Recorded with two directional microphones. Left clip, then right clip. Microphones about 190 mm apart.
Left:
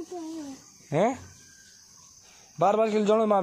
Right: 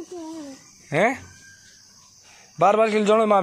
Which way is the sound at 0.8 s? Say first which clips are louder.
Right 4 dB; 10° left (ahead or behind).